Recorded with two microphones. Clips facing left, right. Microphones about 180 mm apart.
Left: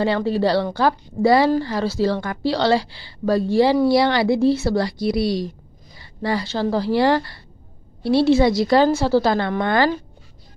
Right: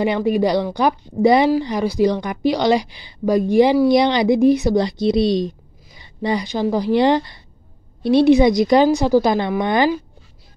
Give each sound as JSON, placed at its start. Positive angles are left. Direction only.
{"t": 0.0, "sound": "a woman's voice", "side_deg": -15}